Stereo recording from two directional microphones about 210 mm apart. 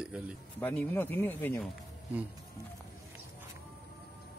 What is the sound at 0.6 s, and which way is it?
Speech, 10° left (ahead or behind).